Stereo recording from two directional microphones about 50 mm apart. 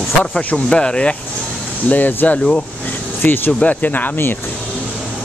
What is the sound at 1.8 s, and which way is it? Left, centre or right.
Speech, left.